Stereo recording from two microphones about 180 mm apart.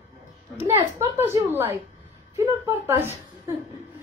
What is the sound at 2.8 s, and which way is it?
Speech, 15° right (ahead or behind).